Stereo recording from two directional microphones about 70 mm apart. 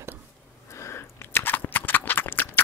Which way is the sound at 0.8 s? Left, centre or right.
Left.